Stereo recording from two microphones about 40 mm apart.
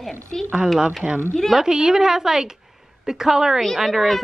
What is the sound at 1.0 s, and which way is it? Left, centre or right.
A woman's voice, centre.